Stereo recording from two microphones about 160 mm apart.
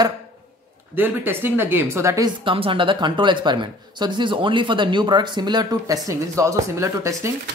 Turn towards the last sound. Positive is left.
turn(degrees=-20)  # may be behind; listen again after turning